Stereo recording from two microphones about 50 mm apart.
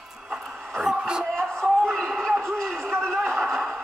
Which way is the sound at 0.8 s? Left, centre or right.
Centre.